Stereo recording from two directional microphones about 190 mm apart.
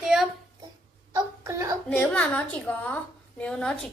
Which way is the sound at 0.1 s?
5° right (ahead or behind).